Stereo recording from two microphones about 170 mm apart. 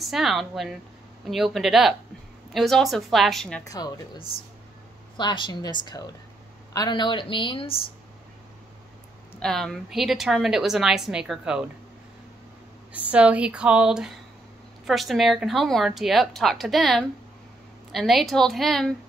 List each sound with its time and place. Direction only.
0.0 s a woman's voice: centre (ahead or behind)
3.6 s speech: 20° left (ahead or behind)
5.1 s speech: 30° left (ahead or behind)
9.4 s a woman's voice: centre (ahead or behind)
12.9 s a woman's voice: 10° right (ahead or behind)